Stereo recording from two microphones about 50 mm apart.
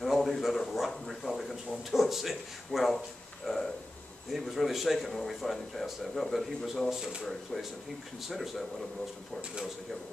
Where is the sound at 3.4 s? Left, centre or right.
Centre.